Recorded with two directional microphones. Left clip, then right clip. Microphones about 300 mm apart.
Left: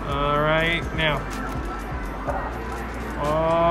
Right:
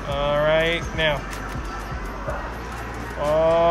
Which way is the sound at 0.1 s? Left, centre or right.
Centre.